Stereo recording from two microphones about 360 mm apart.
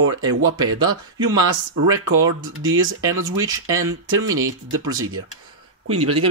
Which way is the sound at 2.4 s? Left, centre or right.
Right.